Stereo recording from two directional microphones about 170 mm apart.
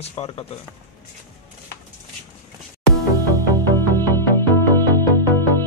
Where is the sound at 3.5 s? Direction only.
15° left (ahead or behind).